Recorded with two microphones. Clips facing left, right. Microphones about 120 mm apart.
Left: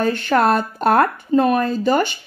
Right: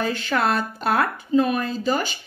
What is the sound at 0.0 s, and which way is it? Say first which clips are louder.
A woman's voice: left 6 dB; 50° left (ahead or behind).